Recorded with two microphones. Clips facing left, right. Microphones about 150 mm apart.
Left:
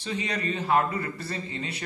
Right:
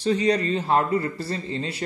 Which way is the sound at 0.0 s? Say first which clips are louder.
Right 9 dB; 40° right (ahead or behind).